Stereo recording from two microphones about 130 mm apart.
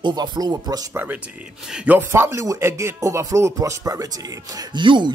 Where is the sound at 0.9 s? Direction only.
15° right (ahead or behind).